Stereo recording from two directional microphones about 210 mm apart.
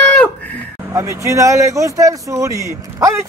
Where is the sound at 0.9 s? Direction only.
15° right (ahead or behind).